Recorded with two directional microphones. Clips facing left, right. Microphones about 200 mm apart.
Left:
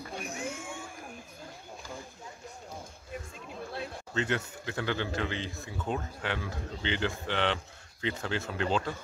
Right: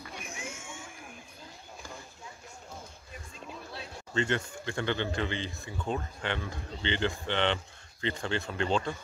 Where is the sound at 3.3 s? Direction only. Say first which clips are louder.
Even; 55° left (ahead or behind).